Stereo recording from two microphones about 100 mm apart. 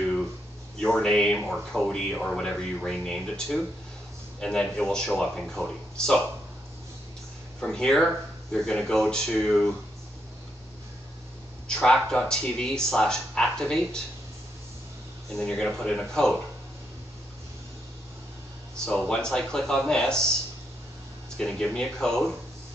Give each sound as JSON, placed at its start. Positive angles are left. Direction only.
{"t": 0.0, "sound": "a sound", "side_deg": 5}
{"t": 0.7, "sound": "speech", "side_deg": 5}
{"t": 7.6, "sound": "speech", "side_deg": 5}
{"t": 11.6, "sound": "speech", "side_deg": 5}
{"t": 15.3, "sound": "speech", "side_deg": 5}
{"t": 18.9, "sound": "speech", "side_deg": 5}
{"t": 21.4, "sound": "speech", "side_deg": 5}